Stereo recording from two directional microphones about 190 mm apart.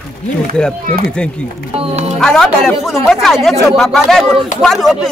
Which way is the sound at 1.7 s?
35° right (ahead or behind).